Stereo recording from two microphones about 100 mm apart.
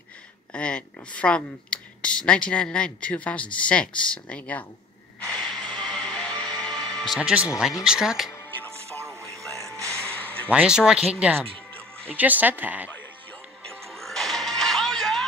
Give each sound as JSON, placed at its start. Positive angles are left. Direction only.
{"t": 0.5, "sound": "speech", "side_deg": 10}
{"t": 5.3, "sound": "music", "side_deg": 5}
{"t": 7.2, "sound": "speech", "side_deg": -10}
{"t": 9.9, "sound": "a sound", "side_deg": 15}
{"t": 10.5, "sound": "speech", "side_deg": -10}
{"t": 13.7, "sound": "music", "side_deg": 5}